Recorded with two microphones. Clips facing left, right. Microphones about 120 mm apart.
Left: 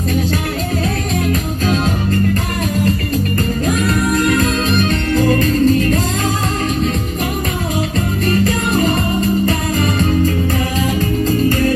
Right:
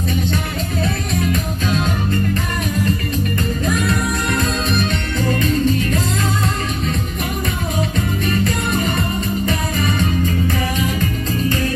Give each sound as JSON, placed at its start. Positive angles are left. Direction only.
{"t": 1.2, "sound": "music", "side_deg": 35}
{"t": 4.4, "sound": "music", "side_deg": 40}
{"t": 8.3, "sound": "music", "side_deg": 35}